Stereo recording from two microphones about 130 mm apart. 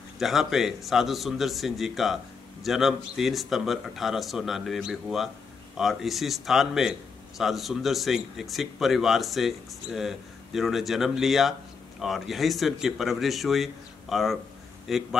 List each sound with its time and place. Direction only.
0.2 s a man's voice: centre (ahead or behind)